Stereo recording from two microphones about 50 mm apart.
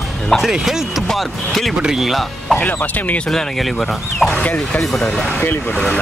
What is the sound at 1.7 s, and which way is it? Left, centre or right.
Speech, centre.